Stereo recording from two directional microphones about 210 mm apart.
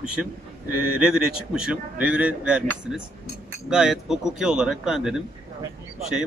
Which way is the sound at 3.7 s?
Centre (ahead or behind).